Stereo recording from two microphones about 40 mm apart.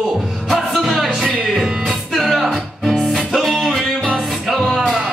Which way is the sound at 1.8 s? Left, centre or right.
Centre.